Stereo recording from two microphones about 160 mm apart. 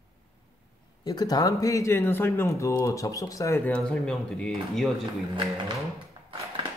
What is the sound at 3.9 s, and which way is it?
Speech, 5° left (ahead or behind).